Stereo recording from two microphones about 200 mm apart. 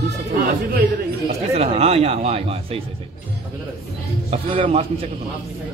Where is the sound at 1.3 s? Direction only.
30° right (ahead or behind).